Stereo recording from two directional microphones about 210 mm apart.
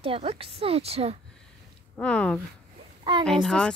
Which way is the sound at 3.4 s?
5° left (ahead or behind).